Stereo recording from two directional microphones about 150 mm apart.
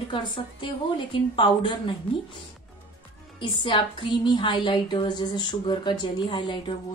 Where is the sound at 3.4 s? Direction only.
35° left (ahead or behind).